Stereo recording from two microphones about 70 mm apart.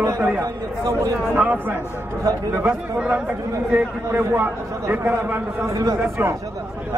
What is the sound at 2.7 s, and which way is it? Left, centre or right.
Speech, centre.